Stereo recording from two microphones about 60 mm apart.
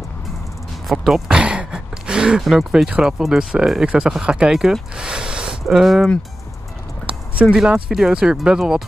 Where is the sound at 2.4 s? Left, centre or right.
Centre.